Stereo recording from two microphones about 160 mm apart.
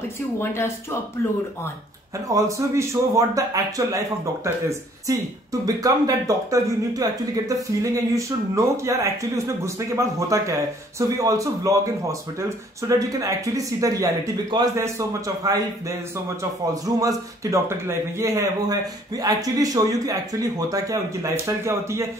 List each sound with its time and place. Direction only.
2.2 s speech: 20° right (ahead or behind)
16.8 s speech: 20° right (ahead or behind)